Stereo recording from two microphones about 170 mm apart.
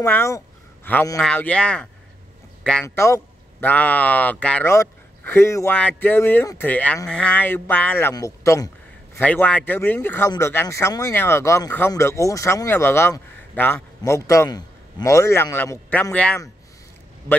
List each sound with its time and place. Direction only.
0.0 s speech: 15° left (ahead or behind)
9.1 s speech: 10° left (ahead or behind)